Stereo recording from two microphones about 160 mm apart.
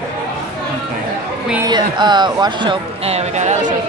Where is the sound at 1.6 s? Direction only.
25° right (ahead or behind).